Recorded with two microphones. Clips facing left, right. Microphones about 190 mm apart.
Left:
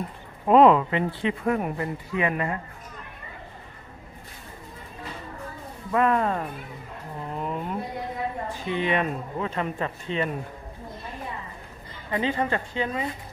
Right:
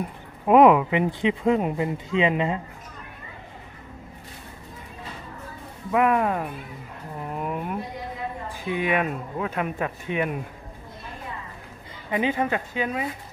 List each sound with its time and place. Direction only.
0.5 s speech: 10° right (ahead or behind)
5.9 s speech: 10° right (ahead or behind)
12.1 s speech: 10° right (ahead or behind)